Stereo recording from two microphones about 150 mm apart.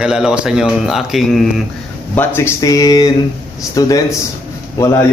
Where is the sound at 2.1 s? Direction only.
15° left (ahead or behind).